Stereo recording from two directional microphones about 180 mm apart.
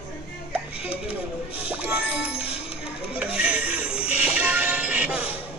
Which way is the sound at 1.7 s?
5° right (ahead or behind).